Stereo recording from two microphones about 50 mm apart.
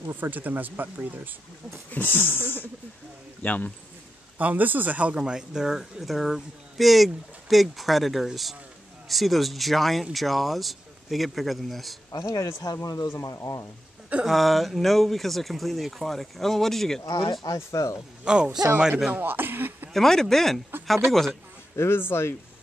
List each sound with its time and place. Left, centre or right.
0.1 s speech: right
1.9 s speech: left
4.4 s speech: right; by 12.0 s centre
12.2 s speech: left
14.2 s speech: centre
17.0 s speech: left
18.2 s speech: centre
19.1 s speech: right
19.9 s speech: centre
21.7 s speech: left